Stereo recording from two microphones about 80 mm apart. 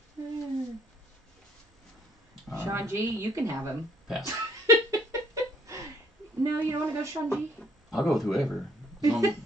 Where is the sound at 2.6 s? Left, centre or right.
Right.